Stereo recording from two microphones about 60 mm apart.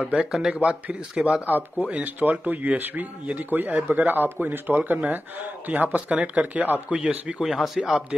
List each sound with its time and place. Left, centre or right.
0.3 s speech: centre
0.6 s speech: right
7.0 s speech: centre
7.5 s speech: centre